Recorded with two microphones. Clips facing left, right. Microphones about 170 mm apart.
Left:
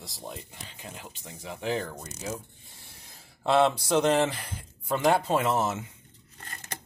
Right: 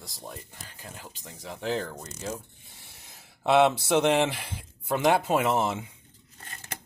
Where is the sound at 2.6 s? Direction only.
20° right (ahead or behind).